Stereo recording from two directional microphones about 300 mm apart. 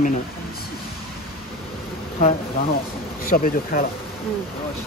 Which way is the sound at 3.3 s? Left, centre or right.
Left.